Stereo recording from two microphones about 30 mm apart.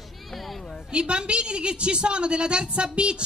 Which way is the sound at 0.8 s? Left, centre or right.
Right.